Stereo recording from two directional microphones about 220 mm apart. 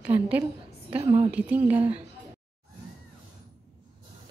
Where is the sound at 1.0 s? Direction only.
25° right (ahead or behind).